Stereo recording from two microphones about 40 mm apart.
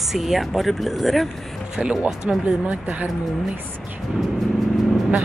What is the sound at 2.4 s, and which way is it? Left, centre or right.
Speech, right.